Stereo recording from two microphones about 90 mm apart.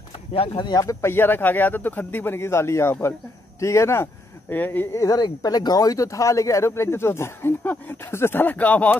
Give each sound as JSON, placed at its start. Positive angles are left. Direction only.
{"t": 0.3, "sound": "speech", "side_deg": 90}
{"t": 0.7, "sound": "speech", "side_deg": 45}
{"t": 1.0, "sound": "a man's voice", "side_deg": 25}
{"t": 4.9, "sound": "speech", "side_deg": 40}